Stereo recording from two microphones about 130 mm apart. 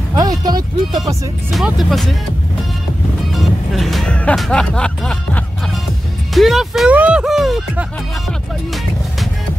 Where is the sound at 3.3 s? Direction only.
Centre (ahead or behind).